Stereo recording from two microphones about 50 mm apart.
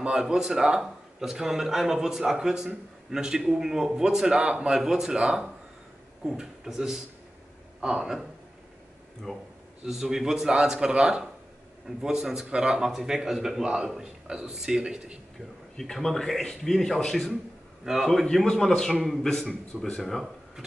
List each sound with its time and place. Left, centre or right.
0.0 s a man's voice: centre
9.3 s speech: centre
9.8 s a man's voice: centre
15.7 s speech: centre
17.9 s a man's voice: centre
18.3 s a man's voice: centre
20.0 s speech: centre